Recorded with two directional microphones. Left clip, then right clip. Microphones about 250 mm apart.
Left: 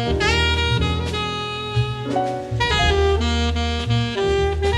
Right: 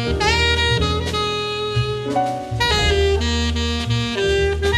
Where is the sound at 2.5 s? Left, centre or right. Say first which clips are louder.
Right 1 dB; centre.